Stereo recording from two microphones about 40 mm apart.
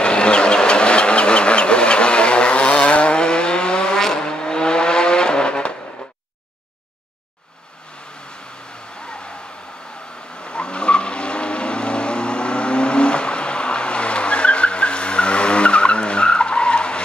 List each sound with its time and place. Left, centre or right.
0.0 s vehicle: left
10.4 s vehicle: left